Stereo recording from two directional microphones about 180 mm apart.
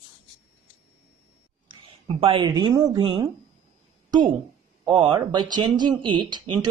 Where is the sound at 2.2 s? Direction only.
30° right (ahead or behind).